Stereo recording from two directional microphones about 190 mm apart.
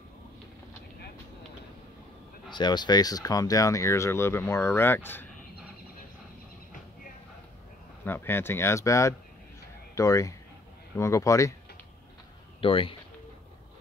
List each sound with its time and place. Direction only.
2.5 s speech: 20° left (ahead or behind)
8.0 s speech: 10° left (ahead or behind)
12.5 s speech: 30° left (ahead or behind)